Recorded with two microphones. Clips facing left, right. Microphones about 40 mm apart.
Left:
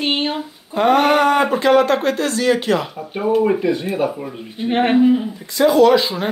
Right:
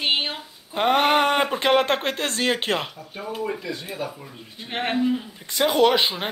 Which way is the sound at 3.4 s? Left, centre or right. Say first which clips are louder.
Left 12 dB; left.